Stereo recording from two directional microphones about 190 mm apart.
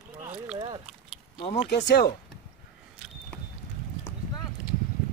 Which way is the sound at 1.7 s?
60° left (ahead or behind).